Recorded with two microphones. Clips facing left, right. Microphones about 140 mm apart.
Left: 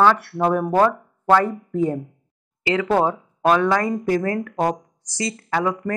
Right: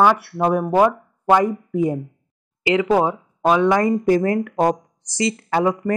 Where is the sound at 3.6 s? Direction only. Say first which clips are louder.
Right 4 dB; 20° right (ahead or behind).